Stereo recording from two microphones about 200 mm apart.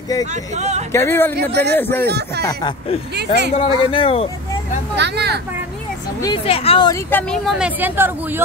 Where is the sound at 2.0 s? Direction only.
55° right (ahead or behind).